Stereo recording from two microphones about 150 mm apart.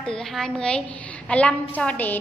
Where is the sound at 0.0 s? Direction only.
5° left (ahead or behind).